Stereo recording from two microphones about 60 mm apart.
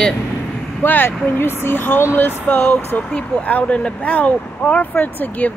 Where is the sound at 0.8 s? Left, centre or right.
Left.